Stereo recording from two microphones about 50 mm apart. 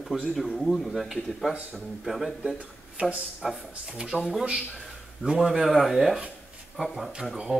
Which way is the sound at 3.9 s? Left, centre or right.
Centre.